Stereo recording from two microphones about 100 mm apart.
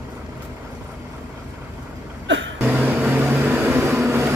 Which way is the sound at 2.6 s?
15° right (ahead or behind).